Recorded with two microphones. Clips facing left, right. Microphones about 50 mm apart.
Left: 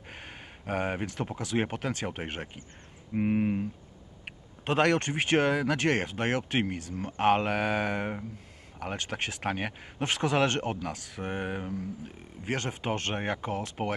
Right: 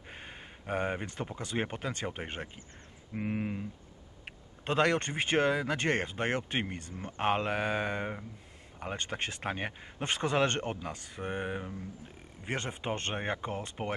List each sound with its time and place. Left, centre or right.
0.3 s a sound: centre
1.6 s speech: centre
3.2 s speech: centre
4.6 s speech: centre
12.4 s speech: centre
13.8 s speech: centre